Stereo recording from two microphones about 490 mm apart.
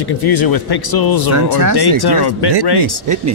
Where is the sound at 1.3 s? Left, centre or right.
Right.